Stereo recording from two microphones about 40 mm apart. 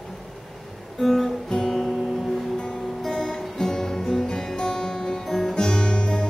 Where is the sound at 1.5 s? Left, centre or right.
Centre.